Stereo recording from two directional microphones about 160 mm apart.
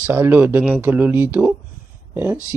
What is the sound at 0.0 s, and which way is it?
Speech, 10° right (ahead or behind).